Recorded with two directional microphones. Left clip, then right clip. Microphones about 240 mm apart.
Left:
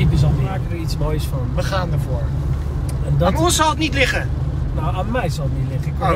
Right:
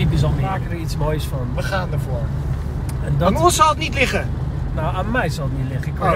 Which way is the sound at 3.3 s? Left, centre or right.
Right.